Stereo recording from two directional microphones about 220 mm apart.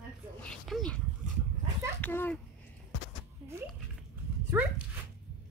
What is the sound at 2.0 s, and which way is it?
Speech, 10° left (ahead or behind).